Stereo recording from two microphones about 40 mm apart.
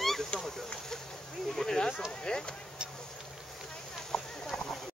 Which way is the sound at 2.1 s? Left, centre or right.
Centre.